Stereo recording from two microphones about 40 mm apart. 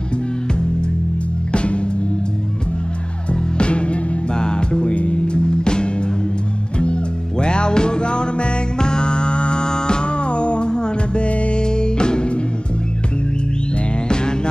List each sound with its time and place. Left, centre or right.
1.5 s music: left
3.3 s music: left
11.6 s music: left
14.0 s music: left